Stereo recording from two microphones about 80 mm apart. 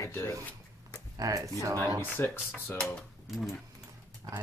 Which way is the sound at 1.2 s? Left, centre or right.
Right.